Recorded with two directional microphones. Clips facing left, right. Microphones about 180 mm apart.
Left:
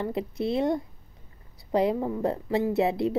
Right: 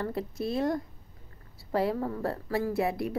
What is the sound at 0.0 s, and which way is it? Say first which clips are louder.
A woman's voice: left 3 dB; 15° left (ahead or behind).